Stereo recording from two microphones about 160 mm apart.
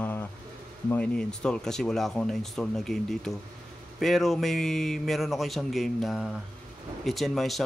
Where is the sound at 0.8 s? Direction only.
10° left (ahead or behind).